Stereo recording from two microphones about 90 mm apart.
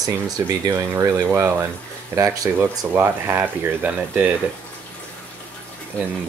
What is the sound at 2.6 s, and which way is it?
Speech, 25° right (ahead or behind).